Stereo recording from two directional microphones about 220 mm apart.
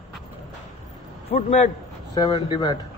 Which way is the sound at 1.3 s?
40° left (ahead or behind).